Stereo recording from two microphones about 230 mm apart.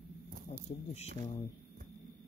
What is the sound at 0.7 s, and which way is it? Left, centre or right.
Speech, left.